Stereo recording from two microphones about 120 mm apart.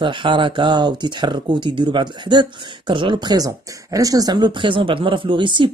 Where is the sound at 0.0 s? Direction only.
45° right (ahead or behind).